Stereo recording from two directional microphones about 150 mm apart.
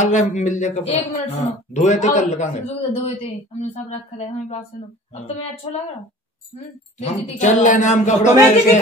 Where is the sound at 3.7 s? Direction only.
45° left (ahead or behind).